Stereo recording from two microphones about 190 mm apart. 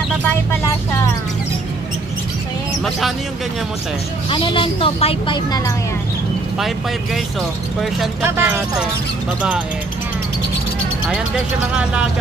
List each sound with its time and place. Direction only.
4.3 s a woman's voice: 25° left (ahead or behind)
8.2 s speech: 10° right (ahead or behind)
11.7 s speech: 5° right (ahead or behind)